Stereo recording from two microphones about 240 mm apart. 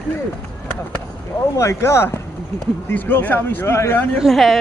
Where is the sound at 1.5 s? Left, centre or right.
Centre.